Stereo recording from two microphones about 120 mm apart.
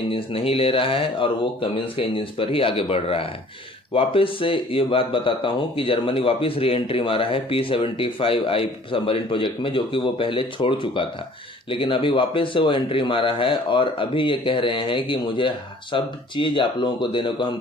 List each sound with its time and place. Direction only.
0.1 s speech: 50° left (ahead or behind)